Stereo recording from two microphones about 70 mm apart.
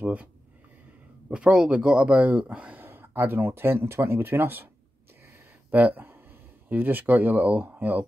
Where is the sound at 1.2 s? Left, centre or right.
Centre; by 4.7 s right.